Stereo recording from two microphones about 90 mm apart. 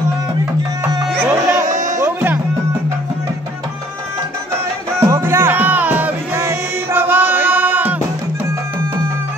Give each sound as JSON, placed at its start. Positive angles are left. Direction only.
{"t": 1.4, "sound": "music", "side_deg": -35}
{"t": 5.0, "sound": "music", "side_deg": -30}